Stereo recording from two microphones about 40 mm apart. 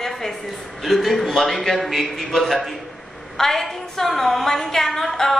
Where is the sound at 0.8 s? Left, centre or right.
Centre.